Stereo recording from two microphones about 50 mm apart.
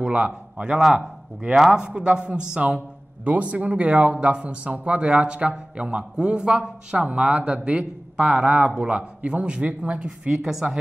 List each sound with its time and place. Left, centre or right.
0.0 s a man's voice: right